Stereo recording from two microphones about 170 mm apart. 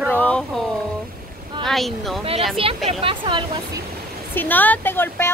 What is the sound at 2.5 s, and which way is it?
Speech, 35° right (ahead or behind).